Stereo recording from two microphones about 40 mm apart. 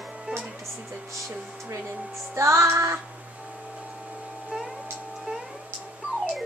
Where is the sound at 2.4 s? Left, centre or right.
Right.